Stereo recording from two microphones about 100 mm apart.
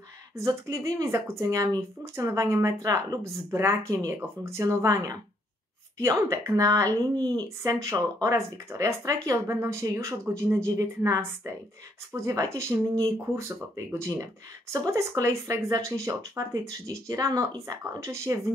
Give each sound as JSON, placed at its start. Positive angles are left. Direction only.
{"t": 0.4, "sound": "a woman's voice", "side_deg": -35}